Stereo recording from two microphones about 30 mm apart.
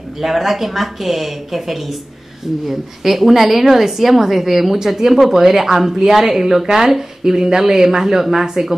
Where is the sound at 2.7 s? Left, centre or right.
Centre.